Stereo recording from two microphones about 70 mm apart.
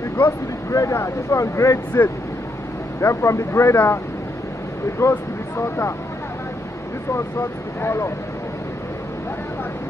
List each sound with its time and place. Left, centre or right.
0.7 s speech: left
5.0 s speech: left
7.2 s speech: left